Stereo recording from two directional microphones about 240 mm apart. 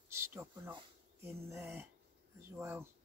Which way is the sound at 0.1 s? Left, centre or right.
Centre.